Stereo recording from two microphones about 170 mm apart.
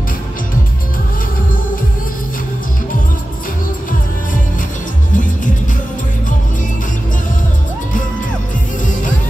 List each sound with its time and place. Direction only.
5.1 s music: 50° left (ahead or behind)